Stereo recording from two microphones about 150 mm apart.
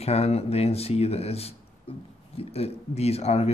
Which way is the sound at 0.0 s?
45° left (ahead or behind).